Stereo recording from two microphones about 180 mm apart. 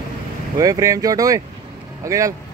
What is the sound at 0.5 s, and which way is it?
Speech, 20° right (ahead or behind).